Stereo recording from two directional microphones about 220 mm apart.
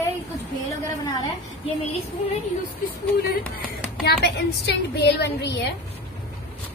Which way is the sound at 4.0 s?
45° left (ahead or behind).